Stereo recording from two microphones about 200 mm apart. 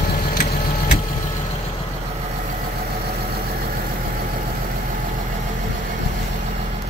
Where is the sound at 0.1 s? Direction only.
50° left (ahead or behind).